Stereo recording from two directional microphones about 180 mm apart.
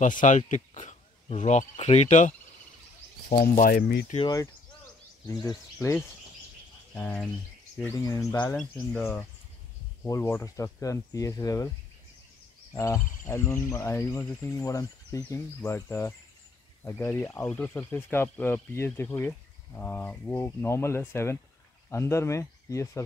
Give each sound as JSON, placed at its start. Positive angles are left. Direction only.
{"t": 0.2, "sound": "speech", "side_deg": 45}
{"t": 3.3, "sound": "speech", "side_deg": 55}
{"t": 5.3, "sound": "speech", "side_deg": 20}
{"t": 6.9, "sound": "bird", "side_deg": 5}
{"t": 7.8, "sound": "speech", "side_deg": 20}
{"t": 10.0, "sound": "speech", "side_deg": 15}
{"t": 12.7, "sound": "speech", "side_deg": 15}